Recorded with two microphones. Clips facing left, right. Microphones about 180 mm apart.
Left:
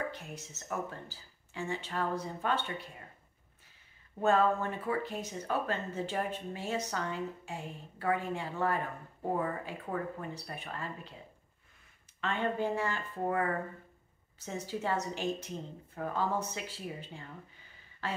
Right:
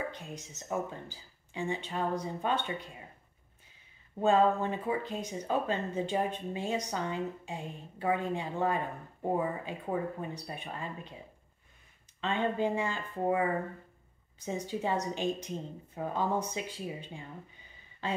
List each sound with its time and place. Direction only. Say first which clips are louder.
0.4 s speech: right 4 dB; 15° right (ahead or behind)
4.2 s speech: right 2 dB; 15° right (ahead or behind)
12.2 s speech: right 2 dB; 20° right (ahead or behind)